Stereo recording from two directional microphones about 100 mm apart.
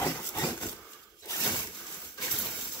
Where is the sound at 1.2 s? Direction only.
35° left (ahead or behind).